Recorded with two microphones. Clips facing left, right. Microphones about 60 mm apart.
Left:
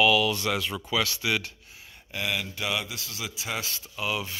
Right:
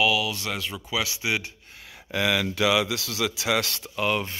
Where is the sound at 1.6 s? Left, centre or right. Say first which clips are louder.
Right 4 dB; right.